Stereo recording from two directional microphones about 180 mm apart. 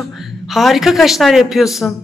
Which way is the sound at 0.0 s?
Centre (ahead or behind).